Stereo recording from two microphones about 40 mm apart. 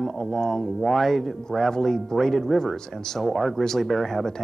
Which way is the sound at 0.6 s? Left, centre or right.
Centre.